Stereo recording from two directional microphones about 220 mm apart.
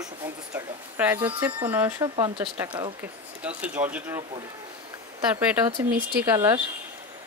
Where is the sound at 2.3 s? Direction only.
10° right (ahead or behind).